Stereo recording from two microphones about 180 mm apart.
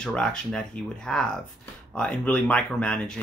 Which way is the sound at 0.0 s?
5° left (ahead or behind).